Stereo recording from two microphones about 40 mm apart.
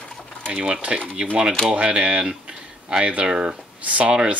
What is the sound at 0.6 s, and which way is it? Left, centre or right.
Speech, right.